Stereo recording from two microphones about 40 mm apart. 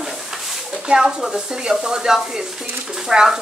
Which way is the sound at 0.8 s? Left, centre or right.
Right.